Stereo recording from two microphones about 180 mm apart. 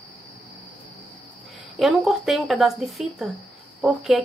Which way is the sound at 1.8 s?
Centre (ahead or behind).